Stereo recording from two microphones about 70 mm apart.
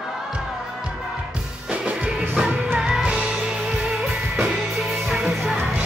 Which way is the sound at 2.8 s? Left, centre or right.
Centre.